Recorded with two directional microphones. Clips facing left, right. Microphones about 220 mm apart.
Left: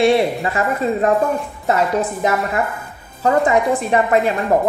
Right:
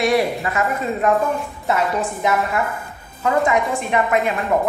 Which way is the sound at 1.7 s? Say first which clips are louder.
Left 3 dB; 40° left (ahead or behind).